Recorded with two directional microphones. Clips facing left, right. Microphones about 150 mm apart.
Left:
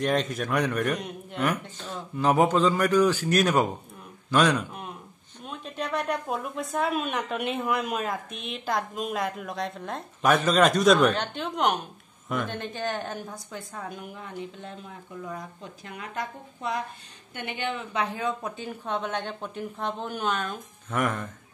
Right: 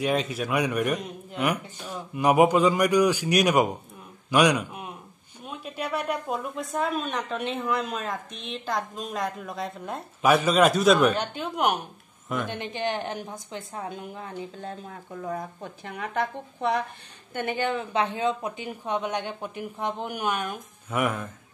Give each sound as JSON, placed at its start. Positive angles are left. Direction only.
{"t": 0.0, "sound": "a woman's voice", "side_deg": -5}
{"t": 15.2, "sound": "speech", "side_deg": -50}
{"t": 17.3, "sound": "a woman's voice", "side_deg": -45}